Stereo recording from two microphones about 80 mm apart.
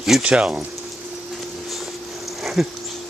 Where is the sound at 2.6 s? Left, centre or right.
Centre.